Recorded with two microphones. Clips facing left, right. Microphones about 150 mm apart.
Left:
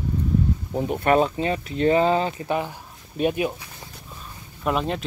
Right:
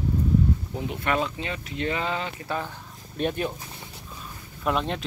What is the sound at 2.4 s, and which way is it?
Speech, 15° left (ahead or behind).